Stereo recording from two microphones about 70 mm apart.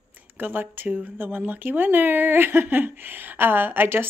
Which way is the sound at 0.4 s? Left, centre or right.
Right.